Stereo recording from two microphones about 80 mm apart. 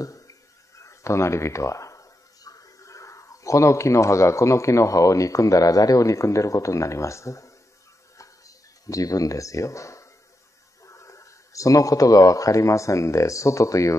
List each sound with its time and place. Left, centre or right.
0.0 s speech: left
8.2 s a sound: left
10.9 s speech: left